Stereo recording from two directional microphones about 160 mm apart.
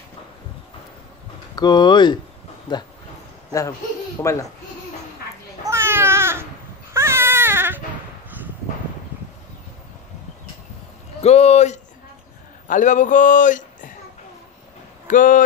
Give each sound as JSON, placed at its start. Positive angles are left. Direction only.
{"t": 1.5, "sound": "speech", "side_deg": 25}
{"t": 4.2, "sound": "speech", "side_deg": 20}
{"t": 5.6, "sound": "babbling", "side_deg": -15}
{"t": 6.9, "sound": "baby cry", "side_deg": -15}
{"t": 11.1, "sound": "a man's voice", "side_deg": 40}
{"t": 15.0, "sound": "speech", "side_deg": 55}